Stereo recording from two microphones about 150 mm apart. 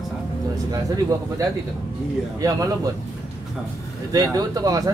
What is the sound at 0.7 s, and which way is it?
Speech, 25° right (ahead or behind).